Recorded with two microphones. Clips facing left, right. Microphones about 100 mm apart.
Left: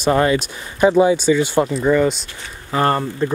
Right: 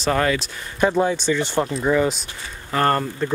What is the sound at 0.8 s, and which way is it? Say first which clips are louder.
Speech: left 6 dB; 10° left (ahead or behind).